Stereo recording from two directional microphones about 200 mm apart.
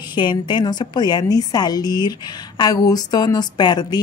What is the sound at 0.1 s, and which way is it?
Speech, 25° left (ahead or behind).